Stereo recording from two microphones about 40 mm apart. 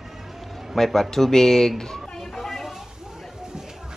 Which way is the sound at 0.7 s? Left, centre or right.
Centre.